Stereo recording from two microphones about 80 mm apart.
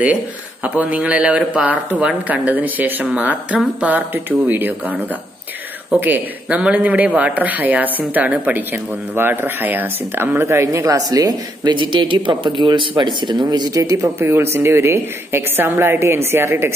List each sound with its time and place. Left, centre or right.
0.7 s a man's voice: centre
5.9 s a man's voice: right
11.7 s speech: right
14.0 s a woman's voice: right